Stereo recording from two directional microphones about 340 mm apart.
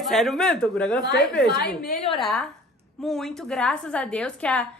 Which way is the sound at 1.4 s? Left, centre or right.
Left.